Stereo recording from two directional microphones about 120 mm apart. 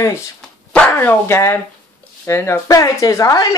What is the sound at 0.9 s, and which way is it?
Speech, 20° left (ahead or behind).